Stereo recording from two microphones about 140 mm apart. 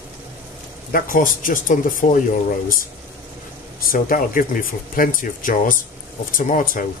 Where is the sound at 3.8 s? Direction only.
90° left.